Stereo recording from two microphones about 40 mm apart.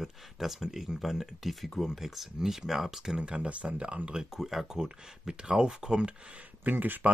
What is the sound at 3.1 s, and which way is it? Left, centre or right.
Speech, right.